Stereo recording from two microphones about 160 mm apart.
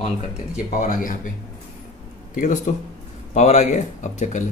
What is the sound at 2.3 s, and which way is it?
Speech, 55° left (ahead or behind).